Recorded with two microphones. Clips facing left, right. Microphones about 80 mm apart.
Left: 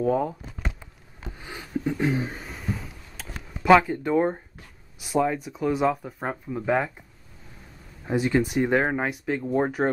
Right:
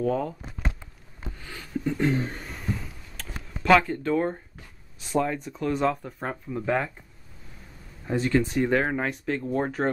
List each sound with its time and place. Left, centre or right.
0.0 s speech: centre
1.4 s a sound: centre
3.7 s speech: centre
8.0 s speech: centre